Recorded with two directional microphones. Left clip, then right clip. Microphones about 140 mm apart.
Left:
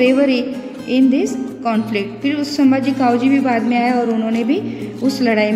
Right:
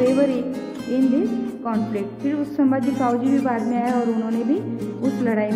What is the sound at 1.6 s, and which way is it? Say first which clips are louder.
A woman's voice: left 9 dB; 20° left (ahead or behind).